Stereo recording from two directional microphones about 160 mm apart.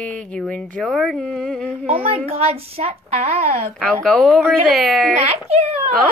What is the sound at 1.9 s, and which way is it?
A woman's voice, 35° right (ahead or behind).